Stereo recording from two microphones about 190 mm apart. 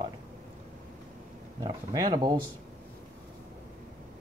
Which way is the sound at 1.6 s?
20° right (ahead or behind).